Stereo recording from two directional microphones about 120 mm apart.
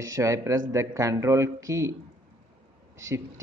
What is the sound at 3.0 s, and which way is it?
Speech, 25° right (ahead or behind).